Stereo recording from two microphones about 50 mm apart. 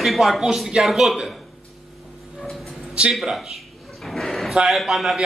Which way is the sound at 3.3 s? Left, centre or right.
Centre.